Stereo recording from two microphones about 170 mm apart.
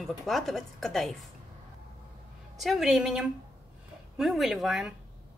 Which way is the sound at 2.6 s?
Centre (ahead or behind).